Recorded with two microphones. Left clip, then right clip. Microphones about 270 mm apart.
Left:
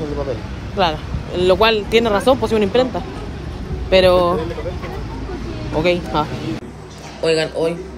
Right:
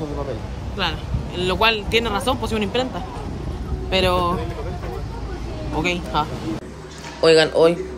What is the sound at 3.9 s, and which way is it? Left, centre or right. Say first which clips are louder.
Speech: left 7 dB; centre.